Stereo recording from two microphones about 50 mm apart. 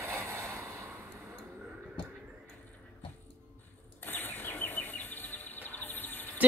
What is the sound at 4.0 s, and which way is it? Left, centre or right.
Music, left.